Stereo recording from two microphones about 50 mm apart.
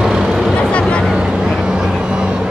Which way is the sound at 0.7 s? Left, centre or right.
Left.